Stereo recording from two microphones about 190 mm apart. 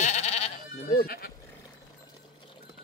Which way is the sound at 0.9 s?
55° left (ahead or behind).